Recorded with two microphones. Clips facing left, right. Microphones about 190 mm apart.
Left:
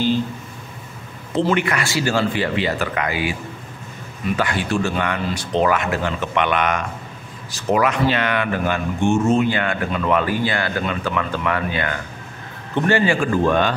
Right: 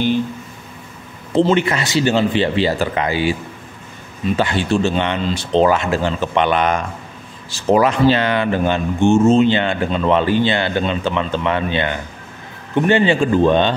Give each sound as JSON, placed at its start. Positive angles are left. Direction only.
{"t": 1.3, "sound": "speech", "side_deg": -25}
{"t": 4.4, "sound": "speech", "side_deg": -25}